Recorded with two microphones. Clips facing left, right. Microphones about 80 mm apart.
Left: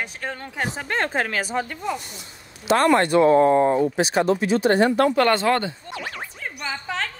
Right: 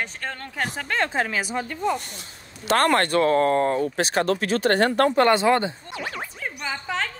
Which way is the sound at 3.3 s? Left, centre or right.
Left.